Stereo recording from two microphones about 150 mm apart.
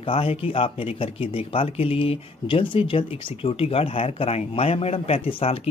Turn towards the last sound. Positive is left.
turn(degrees=40)  # may be behind; listen again after turning